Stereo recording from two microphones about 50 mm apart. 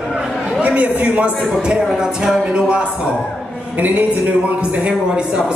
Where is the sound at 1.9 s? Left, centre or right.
Centre.